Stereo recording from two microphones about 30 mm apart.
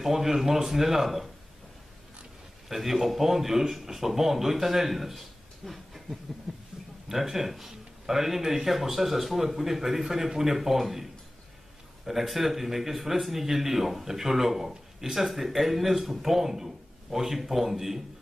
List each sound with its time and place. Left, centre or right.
0.0 s a man's voice: centre
2.7 s a man's voice: centre
5.7 s a sound: centre
7.1 s a man's voice: centre
8.6 s a man's voice: centre
12.1 s a man's voice: centre